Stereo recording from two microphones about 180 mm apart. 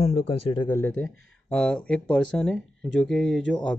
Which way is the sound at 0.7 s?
10° left (ahead or behind).